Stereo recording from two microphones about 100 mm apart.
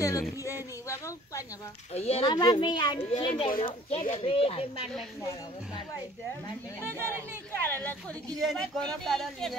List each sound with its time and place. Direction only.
0.0 s speech: 30° left (ahead or behind)
2.0 s speech: 90° left
2.2 s a child's voice: 45° left (ahead or behind)
3.3 s speech: 65° left (ahead or behind)
7.6 s a woman's voice: 20° left (ahead or behind)
8.4 s speech: 5° left (ahead or behind)